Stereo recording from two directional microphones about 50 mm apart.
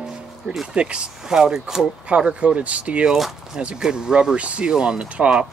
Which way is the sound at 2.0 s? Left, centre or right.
Right.